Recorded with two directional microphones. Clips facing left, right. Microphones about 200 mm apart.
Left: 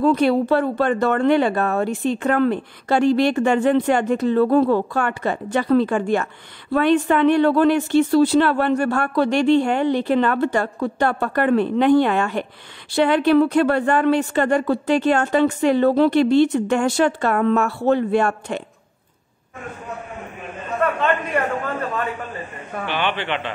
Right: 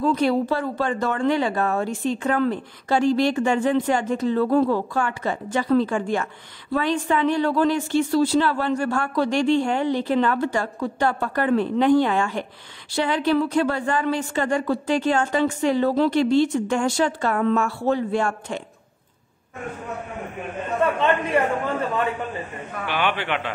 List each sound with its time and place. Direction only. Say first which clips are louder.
0.0 s speech: left 4 dB; 60° left (ahead or behind)
22.8 s a man's voice: even; 10° right (ahead or behind)